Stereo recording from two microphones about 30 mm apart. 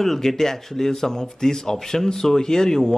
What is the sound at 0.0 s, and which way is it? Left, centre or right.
Speech, centre.